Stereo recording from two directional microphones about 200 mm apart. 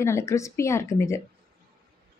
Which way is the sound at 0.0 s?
15° left (ahead or behind).